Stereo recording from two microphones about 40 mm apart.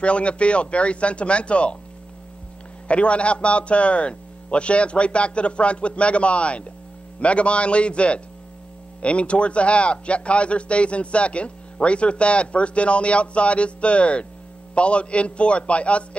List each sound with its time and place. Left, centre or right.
0.0 s a man's voice: left
2.9 s a man's voice: left